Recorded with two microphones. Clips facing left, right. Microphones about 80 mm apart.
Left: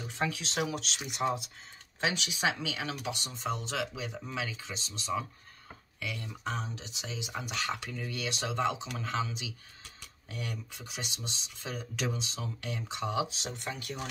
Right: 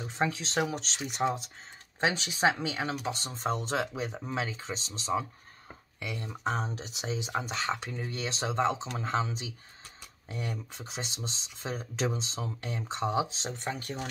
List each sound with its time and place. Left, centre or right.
0.0 s speech: right